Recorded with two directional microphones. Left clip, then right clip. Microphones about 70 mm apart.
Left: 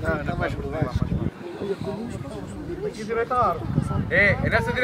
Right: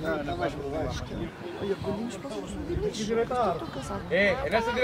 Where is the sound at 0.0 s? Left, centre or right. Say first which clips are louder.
Left 3 dB; left.